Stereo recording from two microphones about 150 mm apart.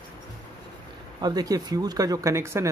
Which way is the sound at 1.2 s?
25° right (ahead or behind).